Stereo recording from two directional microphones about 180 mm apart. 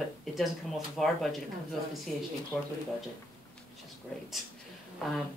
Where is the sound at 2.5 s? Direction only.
5° left (ahead or behind).